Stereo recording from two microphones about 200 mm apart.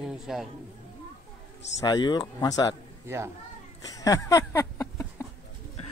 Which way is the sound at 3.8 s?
15° left (ahead or behind).